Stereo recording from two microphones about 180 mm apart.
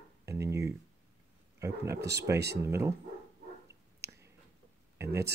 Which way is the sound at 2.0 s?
65° right (ahead or behind).